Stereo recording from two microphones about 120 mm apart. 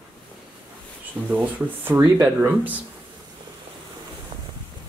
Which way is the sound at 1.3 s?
20° right (ahead or behind).